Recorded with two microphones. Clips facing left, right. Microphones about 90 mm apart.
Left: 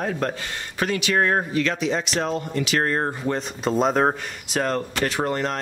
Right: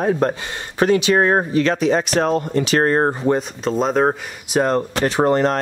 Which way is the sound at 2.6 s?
35° right (ahead or behind).